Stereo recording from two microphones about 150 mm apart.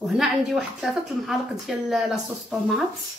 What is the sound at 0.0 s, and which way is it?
Speech, centre (ahead or behind).